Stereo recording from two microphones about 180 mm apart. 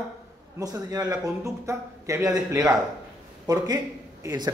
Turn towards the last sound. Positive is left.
turn(degrees=-20)  # may be behind; listen again after turning